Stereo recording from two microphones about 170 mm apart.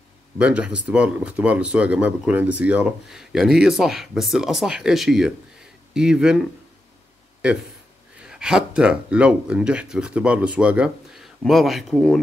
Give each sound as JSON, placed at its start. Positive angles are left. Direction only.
{"t": 0.4, "sound": "speech", "side_deg": -5}
{"t": 8.2, "sound": "speech", "side_deg": -5}